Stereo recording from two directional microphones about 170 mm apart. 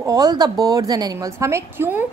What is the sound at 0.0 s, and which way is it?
A woman's voice, 20° right (ahead or behind).